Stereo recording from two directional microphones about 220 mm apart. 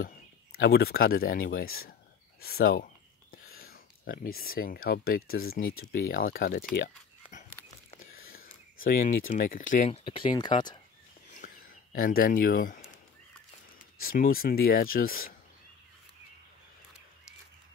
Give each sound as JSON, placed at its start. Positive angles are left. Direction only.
{"t": 0.6, "sound": "speech", "side_deg": 45}
{"t": 2.4, "sound": "a sound", "side_deg": 45}
{"t": 3.7, "sound": "speech", "side_deg": 40}
{"t": 5.6, "sound": "speech", "side_deg": 70}
{"t": 5.9, "sound": "speech", "side_deg": 40}
{"t": 8.8, "sound": "speech", "side_deg": 40}
{"t": 11.3, "sound": "a sound", "side_deg": 40}
{"t": 14.0, "sound": "speech", "side_deg": 40}